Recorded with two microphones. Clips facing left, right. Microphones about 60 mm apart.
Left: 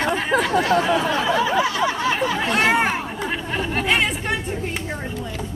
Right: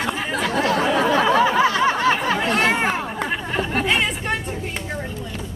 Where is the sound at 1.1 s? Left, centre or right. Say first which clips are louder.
Right 3 dB; right.